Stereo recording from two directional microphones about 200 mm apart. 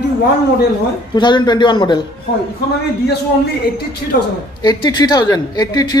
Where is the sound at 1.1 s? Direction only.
20° left (ahead or behind).